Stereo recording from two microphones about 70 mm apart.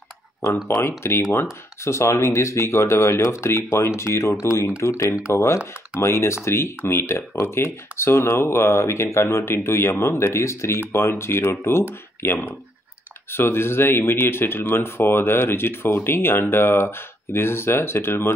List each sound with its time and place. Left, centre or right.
0.7 s speech: left